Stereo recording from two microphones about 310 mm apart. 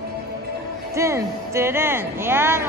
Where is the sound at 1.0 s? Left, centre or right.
Centre.